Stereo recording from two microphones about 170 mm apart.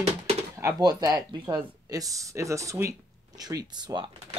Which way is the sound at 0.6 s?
20° right (ahead or behind).